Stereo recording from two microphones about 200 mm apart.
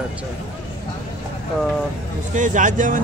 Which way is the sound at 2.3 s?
40° right (ahead or behind).